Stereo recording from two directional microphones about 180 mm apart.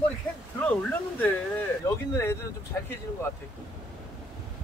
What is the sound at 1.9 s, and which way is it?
Speech, 15° left (ahead or behind).